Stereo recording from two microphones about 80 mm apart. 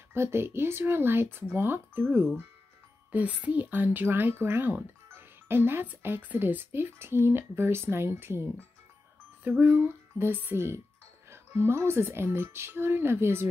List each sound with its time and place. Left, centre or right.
0.1 s speech: right